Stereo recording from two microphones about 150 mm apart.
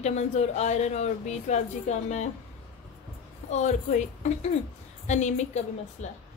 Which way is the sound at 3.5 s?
50° left (ahead or behind).